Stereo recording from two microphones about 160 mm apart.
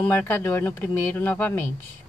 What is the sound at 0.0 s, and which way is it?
A woman's voice, 10° left (ahead or behind).